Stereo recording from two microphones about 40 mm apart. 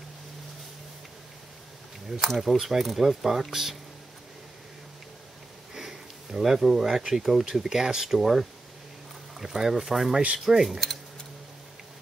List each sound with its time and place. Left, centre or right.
2.0 s speech: centre
5.8 s a sound: centre
7.0 s speech: centre